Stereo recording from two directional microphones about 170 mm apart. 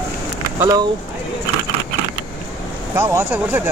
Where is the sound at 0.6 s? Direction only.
25° right (ahead or behind).